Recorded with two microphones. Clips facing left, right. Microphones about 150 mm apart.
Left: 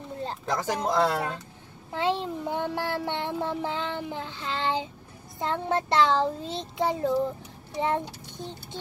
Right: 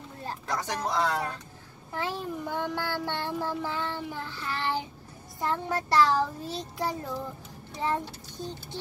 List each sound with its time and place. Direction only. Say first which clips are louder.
0.2 s child singing: left 3 dB; 25° left (ahead or behind)
7.8 s speech: left 2 dB; 20° left (ahead or behind)